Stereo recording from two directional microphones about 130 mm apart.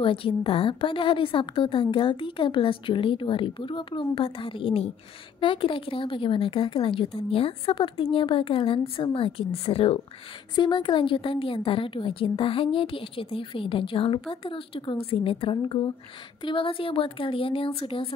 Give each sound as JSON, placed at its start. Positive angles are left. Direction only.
{"t": 0.0, "sound": "a woman's voice", "side_deg": 45}
{"t": 10.5, "sound": "a woman's voice", "side_deg": 35}